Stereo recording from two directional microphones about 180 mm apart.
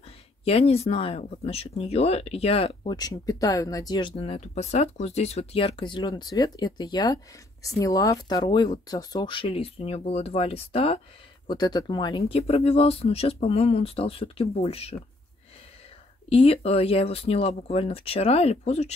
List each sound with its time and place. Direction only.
0.5 s speech: 35° left (ahead or behind)
16.3 s speech: 35° left (ahead or behind)